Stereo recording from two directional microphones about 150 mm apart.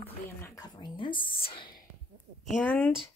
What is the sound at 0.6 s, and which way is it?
Speech, 30° left (ahead or behind).